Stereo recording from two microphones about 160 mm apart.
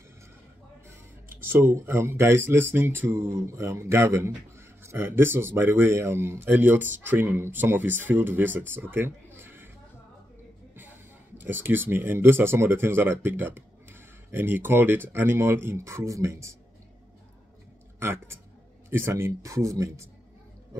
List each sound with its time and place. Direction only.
1.4 s speech: 15° right (ahead or behind)
11.3 s speech: 10° right (ahead or behind)
17.9 s speech: 15° right (ahead or behind)